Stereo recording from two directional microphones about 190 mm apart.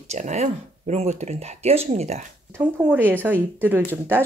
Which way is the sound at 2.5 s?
10° right (ahead or behind).